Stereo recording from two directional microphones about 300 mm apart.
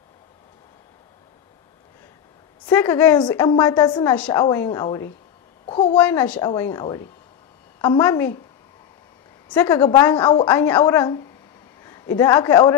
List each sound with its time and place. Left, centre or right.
2.6 s a woman's voice: centre
5.7 s a sound: centre
5.9 s a woman's voice: centre
9.5 s a woman's voice: centre